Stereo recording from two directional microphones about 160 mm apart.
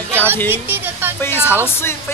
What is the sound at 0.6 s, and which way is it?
Speech, 15° right (ahead or behind).